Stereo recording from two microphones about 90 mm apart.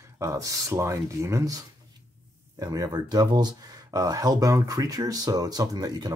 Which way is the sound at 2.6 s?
45° right (ahead or behind).